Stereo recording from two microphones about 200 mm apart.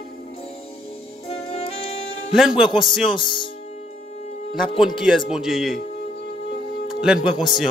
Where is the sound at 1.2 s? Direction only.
30° left (ahead or behind).